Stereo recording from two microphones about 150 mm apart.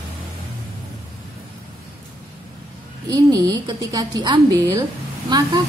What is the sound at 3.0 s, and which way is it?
A woman's voice, 25° right (ahead or behind).